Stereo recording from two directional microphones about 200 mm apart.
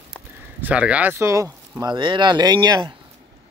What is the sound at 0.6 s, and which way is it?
Speech, 5° right (ahead or behind).